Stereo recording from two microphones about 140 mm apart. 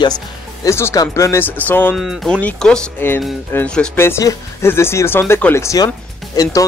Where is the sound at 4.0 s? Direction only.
20° left (ahead or behind).